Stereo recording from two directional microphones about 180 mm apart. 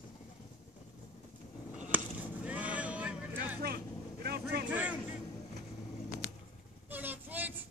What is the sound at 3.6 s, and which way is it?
Vehicle, 60° right (ahead or behind).